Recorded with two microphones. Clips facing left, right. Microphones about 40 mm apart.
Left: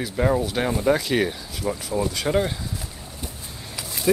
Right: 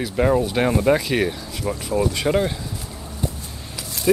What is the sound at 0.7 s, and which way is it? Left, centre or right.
Speech, centre.